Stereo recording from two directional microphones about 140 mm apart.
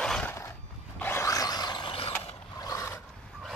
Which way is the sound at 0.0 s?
5° left (ahead or behind).